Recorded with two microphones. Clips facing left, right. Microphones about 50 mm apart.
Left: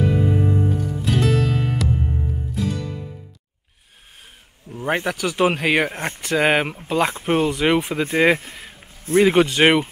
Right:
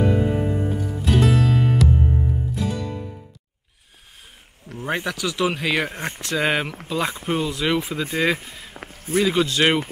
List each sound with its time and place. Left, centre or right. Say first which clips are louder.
0.0 s music: even; centre
4.8 s speech: left 3 dB; centre
8.5 s a sound: left 2 dB; left
9.1 s speech: left 5 dB; left